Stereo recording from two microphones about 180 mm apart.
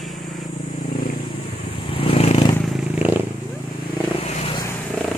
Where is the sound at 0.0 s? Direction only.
Centre (ahead or behind).